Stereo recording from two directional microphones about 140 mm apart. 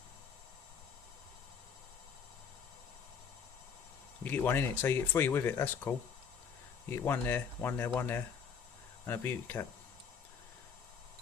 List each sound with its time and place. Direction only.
4.2 s speech: 10° left (ahead or behind)